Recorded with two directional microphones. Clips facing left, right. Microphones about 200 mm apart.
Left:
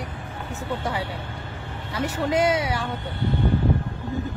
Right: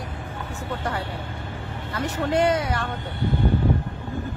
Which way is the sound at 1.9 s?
10° left (ahead or behind).